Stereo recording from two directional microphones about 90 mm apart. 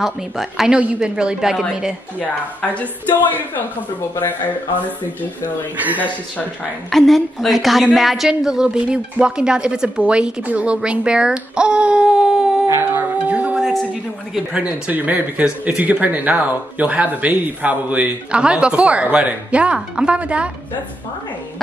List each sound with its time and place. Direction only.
0.0 s a woman's voice: 5° right (ahead or behind)
2.2 s speech: 15° left (ahead or behind)
5.8 s speech: 20° right (ahead or behind)
6.9 s speech: centre (ahead or behind)
12.9 s music: 15° right (ahead or behind)
14.5 s speech: 15° right (ahead or behind)